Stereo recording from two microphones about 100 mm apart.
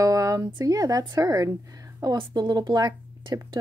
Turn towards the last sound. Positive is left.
turn(degrees=-40)  # may be behind; listen again after turning